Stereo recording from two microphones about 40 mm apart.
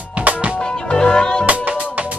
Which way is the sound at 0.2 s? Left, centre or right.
Right.